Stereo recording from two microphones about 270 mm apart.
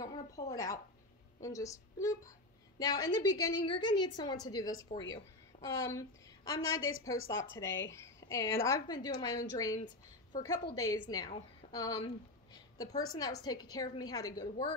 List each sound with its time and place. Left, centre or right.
0.0 s a woman's voice: centre
4.9 s speech: left
5.5 s a sound: centre
5.9 s a woman's voice: centre